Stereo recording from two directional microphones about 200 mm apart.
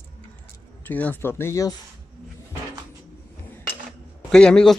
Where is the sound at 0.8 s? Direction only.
10° left (ahead or behind).